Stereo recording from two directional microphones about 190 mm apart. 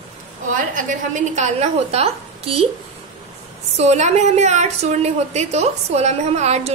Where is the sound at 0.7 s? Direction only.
40° right (ahead or behind).